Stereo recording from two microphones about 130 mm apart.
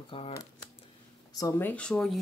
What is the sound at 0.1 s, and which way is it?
Speech, 45° left (ahead or behind).